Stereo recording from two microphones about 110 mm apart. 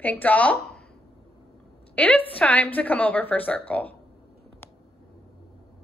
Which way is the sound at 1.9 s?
15° left (ahead or behind).